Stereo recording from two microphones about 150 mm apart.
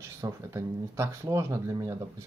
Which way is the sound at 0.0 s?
20° right (ahead or behind).